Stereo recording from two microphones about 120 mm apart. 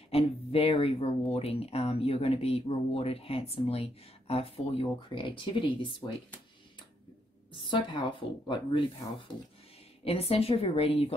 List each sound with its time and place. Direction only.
0.1 s speech: 55° left (ahead or behind)
7.5 s a woman's voice: 40° left (ahead or behind)
10.0 s speech: 55° left (ahead or behind)